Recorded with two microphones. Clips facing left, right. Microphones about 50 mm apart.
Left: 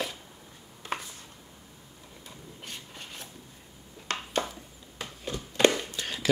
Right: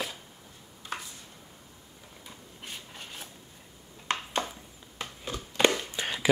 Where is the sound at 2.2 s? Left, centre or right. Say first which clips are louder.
Left 1 dB; centre.